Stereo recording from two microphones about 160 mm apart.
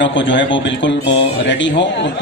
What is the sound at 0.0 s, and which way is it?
A man's voice, 90° left.